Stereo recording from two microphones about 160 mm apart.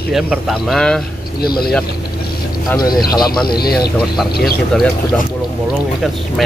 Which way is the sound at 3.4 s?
75° left (ahead or behind).